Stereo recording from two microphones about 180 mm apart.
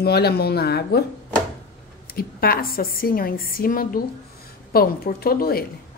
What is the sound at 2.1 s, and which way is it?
A woman's voice, 55° left (ahead or behind).